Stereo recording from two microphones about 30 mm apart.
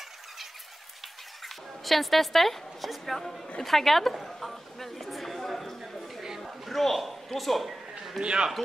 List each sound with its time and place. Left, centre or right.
1.4 s a man's voice: centre
8.2 s a man's voice: right